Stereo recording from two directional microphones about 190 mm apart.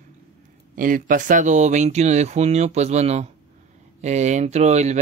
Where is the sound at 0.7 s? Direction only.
45° right (ahead or behind).